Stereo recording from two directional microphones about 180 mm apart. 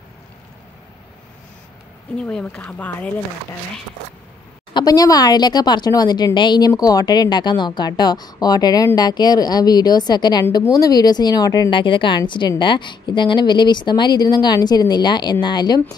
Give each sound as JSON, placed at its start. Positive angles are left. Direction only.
{"t": 2.1, "sound": "speech", "side_deg": 5}
{"t": 4.7, "sound": "speech", "side_deg": 20}